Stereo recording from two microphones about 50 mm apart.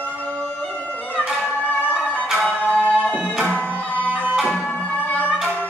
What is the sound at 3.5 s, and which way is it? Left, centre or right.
Music, left.